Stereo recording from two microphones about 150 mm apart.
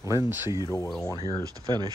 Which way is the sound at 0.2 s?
20° right (ahead or behind).